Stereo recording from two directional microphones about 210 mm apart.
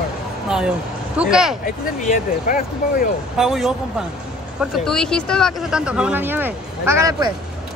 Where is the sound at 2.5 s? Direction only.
40° left (ahead or behind).